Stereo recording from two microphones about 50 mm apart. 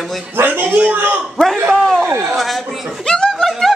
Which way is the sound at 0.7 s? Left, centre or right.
Right.